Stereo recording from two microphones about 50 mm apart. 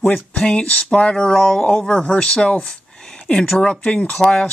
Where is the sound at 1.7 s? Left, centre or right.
Left.